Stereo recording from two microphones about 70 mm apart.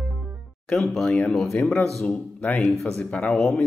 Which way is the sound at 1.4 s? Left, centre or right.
Left.